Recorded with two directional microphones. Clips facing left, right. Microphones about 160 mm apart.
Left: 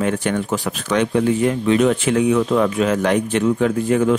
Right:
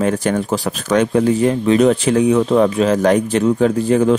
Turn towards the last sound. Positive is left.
turn(degrees=-30)  # may be behind; listen again after turning